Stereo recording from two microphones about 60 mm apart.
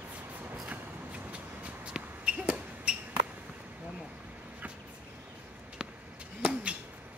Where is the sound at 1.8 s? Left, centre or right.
Centre.